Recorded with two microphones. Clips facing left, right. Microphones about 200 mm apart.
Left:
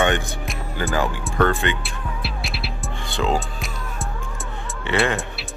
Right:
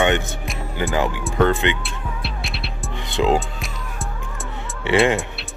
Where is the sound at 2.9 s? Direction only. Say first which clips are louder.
Right 4 dB; 20° right (ahead or behind).